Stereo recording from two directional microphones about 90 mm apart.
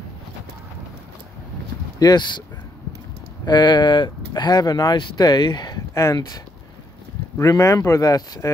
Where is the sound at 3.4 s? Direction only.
55° left (ahead or behind).